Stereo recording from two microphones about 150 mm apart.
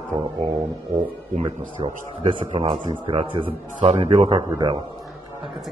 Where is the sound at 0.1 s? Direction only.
40° right (ahead or behind).